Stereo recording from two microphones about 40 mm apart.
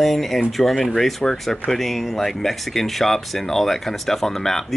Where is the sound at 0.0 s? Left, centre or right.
Centre.